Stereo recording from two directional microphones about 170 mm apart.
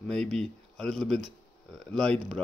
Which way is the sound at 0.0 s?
5° left (ahead or behind).